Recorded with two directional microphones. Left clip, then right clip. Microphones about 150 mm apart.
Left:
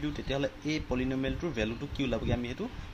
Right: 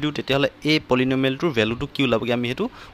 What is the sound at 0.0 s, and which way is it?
Speech, 80° right.